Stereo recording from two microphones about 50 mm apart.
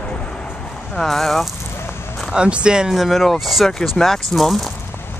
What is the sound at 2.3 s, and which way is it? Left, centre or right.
Speech, right.